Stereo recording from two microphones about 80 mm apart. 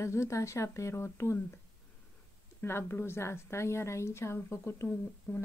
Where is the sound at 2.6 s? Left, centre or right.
Left.